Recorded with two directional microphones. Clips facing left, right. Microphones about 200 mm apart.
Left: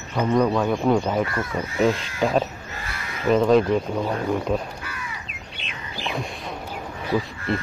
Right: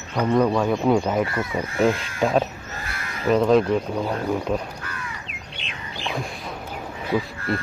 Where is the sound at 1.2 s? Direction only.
25° right (ahead or behind).